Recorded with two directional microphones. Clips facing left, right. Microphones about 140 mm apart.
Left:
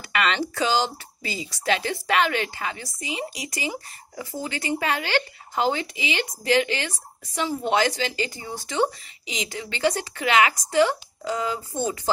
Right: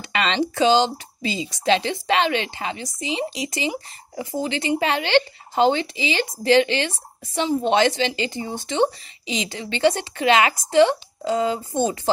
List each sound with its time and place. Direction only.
0.0 s a woman's voice: 25° right (ahead or behind)